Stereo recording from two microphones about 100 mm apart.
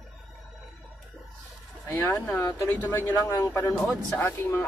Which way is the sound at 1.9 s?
30° left (ahead or behind).